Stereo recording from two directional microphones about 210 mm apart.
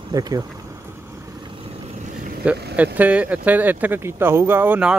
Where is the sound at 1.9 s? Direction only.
35° right (ahead or behind).